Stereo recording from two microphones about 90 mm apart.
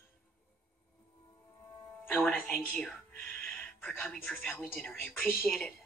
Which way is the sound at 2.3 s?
15° left (ahead or behind).